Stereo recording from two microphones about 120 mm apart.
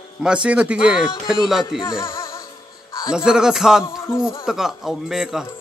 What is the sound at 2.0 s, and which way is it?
Music, 25° left (ahead or behind).